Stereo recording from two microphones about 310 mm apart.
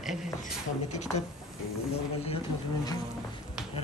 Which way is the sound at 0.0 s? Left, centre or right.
Centre.